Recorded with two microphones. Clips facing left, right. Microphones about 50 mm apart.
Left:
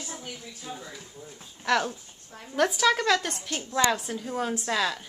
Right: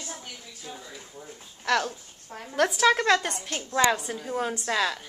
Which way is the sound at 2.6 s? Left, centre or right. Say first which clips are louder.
Right 1 dB; centre.